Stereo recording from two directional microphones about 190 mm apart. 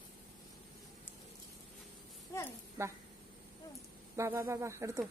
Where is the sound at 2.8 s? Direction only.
15° right (ahead or behind).